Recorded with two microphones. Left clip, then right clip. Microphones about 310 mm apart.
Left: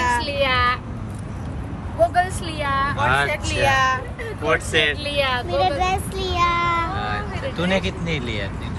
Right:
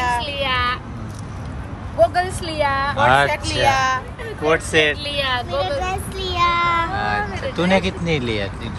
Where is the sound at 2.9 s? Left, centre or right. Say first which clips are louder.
Right 4 dB; centre.